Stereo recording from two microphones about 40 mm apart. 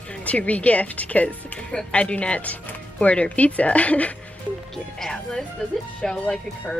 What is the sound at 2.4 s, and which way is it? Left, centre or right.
Speech, left.